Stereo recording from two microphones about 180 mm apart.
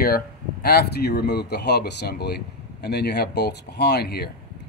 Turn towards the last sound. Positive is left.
turn(degrees=60)  # may be behind; listen again after turning